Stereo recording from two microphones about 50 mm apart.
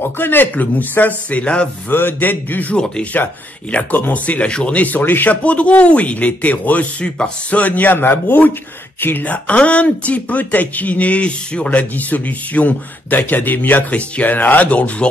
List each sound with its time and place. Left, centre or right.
0.0 s speech: left
1.9 s speech: left
2.7 s speech: left
3.9 s speech: left
4.5 s speech: centre
4.7 s speech: left
5.4 s speech: left
11.7 s speech: left